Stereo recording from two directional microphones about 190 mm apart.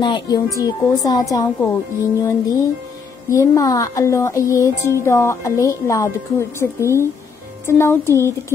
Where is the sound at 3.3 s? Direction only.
15° left (ahead or behind).